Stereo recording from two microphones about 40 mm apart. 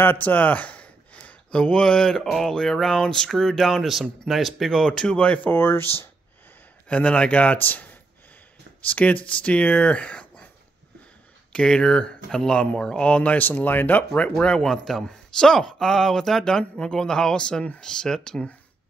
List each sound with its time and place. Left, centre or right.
0.2 s speech: left; by 3.8 s centre
3.8 s speech: centre
4.6 s speech: centre
5.1 s a man's voice: left
5.5 s speech: left
6.9 s a man's voice: left
8.8 s a man's voice: left
11.5 s speech: centre
13.4 s speech: left
14.6 s speech: centre